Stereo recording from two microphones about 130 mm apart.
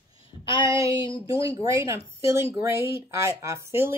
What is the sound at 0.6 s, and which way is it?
Speech, 25° right (ahead or behind).